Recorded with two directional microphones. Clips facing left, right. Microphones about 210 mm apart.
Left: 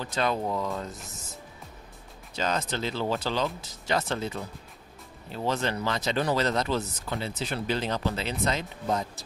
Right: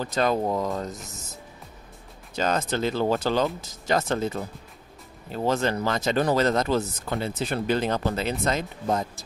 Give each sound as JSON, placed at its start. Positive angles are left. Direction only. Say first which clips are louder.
{"t": 0.0, "sound": "speech", "louder": "right 4 dB", "side_deg": -40}
{"t": 2.3, "sound": "speech", "louder": "right 4 dB", "side_deg": -50}